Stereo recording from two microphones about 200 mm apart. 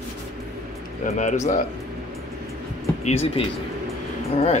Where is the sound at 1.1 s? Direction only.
35° left (ahead or behind).